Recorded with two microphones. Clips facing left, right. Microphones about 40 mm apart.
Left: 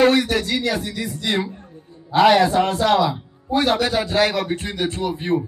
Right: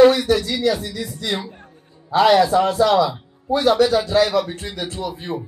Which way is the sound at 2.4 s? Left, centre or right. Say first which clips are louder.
Right 1 dB; left.